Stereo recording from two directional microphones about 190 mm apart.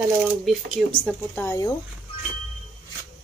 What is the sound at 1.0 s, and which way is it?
Speech, 10° left (ahead or behind).